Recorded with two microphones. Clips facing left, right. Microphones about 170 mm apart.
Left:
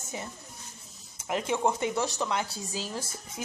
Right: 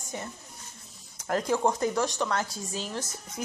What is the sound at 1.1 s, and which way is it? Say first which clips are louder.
Speech: right 3 dB; 5° left (ahead or behind).